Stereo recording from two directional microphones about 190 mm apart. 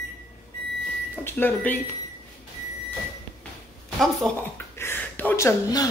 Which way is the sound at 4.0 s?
Centre (ahead or behind).